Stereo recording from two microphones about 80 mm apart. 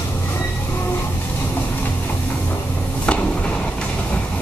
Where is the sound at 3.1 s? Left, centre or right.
Centre.